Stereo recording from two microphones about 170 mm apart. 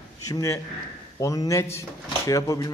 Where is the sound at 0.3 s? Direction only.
15° left (ahead or behind).